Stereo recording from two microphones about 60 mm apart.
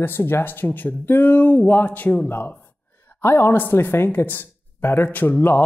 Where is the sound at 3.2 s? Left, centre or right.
Left.